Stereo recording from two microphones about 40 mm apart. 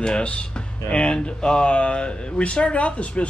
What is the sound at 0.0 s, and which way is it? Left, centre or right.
Speech, left.